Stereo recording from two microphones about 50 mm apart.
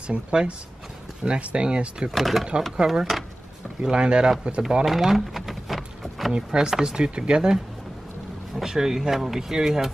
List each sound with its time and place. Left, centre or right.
0.0 s speech: centre
2.0 s speech: centre
3.8 s speech: centre
4.6 s a sound: centre
6.3 s speech: centre